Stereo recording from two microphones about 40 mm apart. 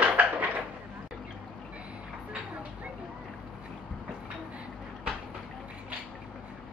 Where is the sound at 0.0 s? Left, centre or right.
Right.